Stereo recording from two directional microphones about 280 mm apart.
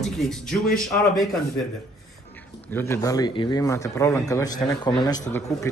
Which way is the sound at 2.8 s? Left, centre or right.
Centre.